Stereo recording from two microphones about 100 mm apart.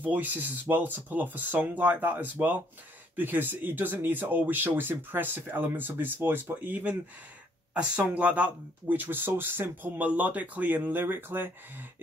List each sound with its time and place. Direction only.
0.0 s speech: 15° right (ahead or behind)